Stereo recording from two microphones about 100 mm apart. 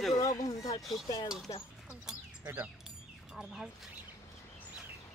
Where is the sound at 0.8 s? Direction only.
Centre (ahead or behind).